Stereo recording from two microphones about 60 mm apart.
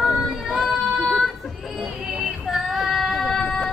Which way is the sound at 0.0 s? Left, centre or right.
Centre.